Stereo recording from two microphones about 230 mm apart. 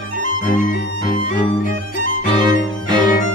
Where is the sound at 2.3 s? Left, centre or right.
Centre.